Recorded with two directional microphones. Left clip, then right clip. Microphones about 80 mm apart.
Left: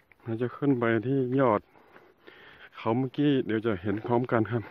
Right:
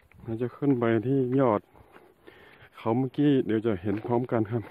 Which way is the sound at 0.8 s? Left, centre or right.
Right.